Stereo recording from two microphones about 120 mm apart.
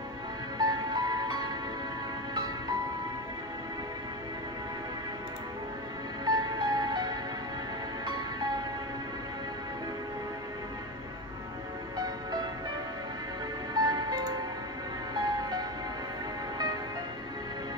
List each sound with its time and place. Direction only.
0.6 s music: 35° right (ahead or behind)
6.2 s music: 35° right (ahead or behind)
13.7 s music: 35° right (ahead or behind)